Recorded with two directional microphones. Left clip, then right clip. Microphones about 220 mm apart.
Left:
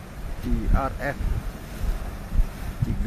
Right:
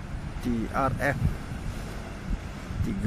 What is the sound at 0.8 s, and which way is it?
Speech, 15° right (ahead or behind).